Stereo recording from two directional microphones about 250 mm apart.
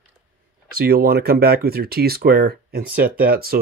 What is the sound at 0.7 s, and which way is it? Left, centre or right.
Speech, right.